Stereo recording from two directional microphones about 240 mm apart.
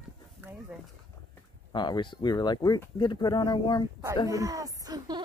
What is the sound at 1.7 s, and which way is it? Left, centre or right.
Speech, centre.